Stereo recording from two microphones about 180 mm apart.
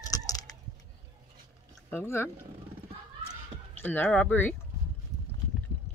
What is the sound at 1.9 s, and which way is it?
Speech, 10° left (ahead or behind).